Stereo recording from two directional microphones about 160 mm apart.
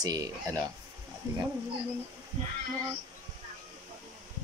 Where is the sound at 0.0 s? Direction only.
20° right (ahead or behind).